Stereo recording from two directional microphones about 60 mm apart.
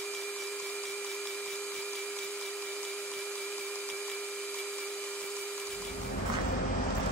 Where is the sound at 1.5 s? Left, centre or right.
Centre.